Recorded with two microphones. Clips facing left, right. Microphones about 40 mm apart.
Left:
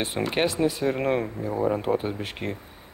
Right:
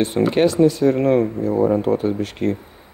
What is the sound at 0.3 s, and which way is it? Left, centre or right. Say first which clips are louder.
Speech: right 8 dB; centre.